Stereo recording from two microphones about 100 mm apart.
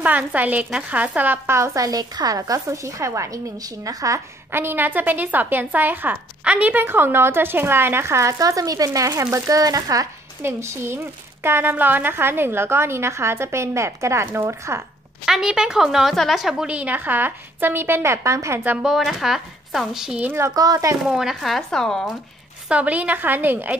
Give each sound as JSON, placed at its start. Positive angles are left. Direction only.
{"t": 0.0, "sound": "a woman's voice", "side_deg": -15}
{"t": 10.4, "sound": "a woman's voice", "side_deg": -25}
{"t": 15.2, "sound": "a woman's voice", "side_deg": -5}
{"t": 18.8, "sound": "speech", "side_deg": -5}
{"t": 20.2, "sound": "a woman's voice", "side_deg": -30}
{"t": 21.1, "sound": "speech", "side_deg": -5}
{"t": 22.7, "sound": "a woman's voice", "side_deg": -15}